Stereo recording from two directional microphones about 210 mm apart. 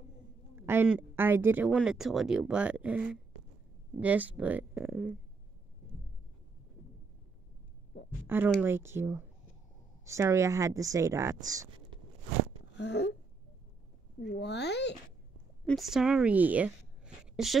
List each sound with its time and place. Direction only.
0.6 s speech: 10° right (ahead or behind)
8.3 s speech: 10° right (ahead or behind)
12.7 s a sound: 55° left (ahead or behind)
14.4 s speech: 55° left (ahead or behind)
15.6 s speech: centre (ahead or behind)